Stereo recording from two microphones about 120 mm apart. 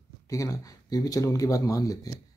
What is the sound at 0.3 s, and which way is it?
Speech, 30° left (ahead or behind).